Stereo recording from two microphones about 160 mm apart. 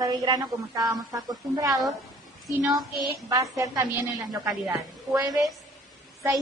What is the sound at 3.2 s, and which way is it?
A woman's voice, 20° right (ahead or behind).